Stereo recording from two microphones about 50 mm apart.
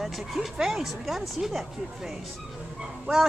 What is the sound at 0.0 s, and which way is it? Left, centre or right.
Speech, centre.